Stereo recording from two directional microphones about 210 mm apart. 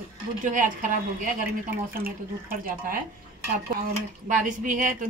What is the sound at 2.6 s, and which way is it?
Speech, 45° right (ahead or behind).